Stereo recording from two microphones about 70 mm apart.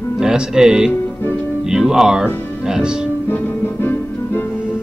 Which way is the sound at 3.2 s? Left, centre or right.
Left.